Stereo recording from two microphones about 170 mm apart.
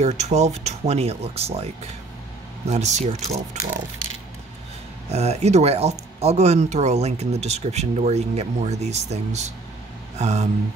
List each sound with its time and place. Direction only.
0.0 s speech: 40° right (ahead or behind)
5.1 s speech: 40° right (ahead or behind)